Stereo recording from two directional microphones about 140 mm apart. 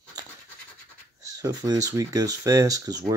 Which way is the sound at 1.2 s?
25° right (ahead or behind).